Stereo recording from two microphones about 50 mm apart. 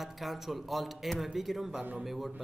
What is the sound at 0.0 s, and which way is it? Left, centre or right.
Speech, centre.